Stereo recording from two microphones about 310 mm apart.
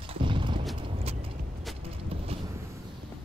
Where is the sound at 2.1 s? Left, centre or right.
Centre.